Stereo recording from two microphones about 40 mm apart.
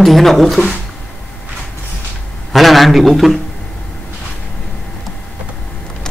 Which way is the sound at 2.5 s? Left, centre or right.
Centre.